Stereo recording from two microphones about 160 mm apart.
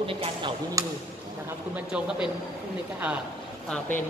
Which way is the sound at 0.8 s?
20° right (ahead or behind).